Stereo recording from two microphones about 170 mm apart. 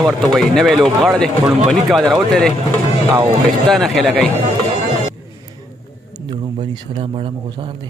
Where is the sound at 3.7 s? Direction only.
Centre (ahead or behind).